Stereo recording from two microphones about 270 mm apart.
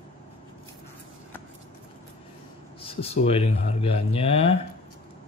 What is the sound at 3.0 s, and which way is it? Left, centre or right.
Speech, left.